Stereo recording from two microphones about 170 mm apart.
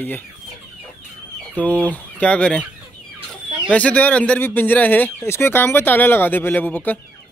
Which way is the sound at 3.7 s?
10° left (ahead or behind).